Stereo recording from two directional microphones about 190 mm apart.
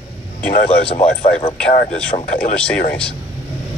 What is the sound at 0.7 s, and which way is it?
Speech, 30° left (ahead or behind).